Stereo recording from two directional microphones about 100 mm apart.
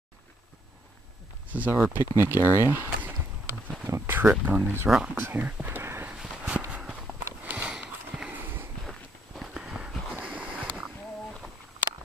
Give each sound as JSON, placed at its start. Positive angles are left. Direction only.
{"t": 1.5, "sound": "speech", "side_deg": -15}
{"t": 3.9, "sound": "a sound", "side_deg": -25}
{"t": 4.3, "sound": "speech", "side_deg": -15}
{"t": 6.1, "sound": "walk", "side_deg": -10}
{"t": 7.2, "sound": "sniff", "side_deg": -15}
{"t": 8.8, "sound": "walk", "side_deg": 0}
{"t": 10.1, "sound": "a sound", "side_deg": -15}